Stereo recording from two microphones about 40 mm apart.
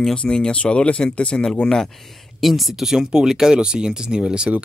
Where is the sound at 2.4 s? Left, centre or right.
Centre; by 4.5 s right.